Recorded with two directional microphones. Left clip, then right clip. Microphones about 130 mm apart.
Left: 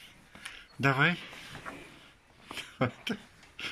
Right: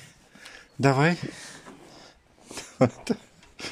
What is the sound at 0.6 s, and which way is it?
Speech, 35° right (ahead or behind).